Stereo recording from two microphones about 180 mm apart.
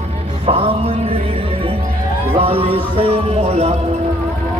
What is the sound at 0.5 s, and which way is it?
Music, 30° right (ahead or behind).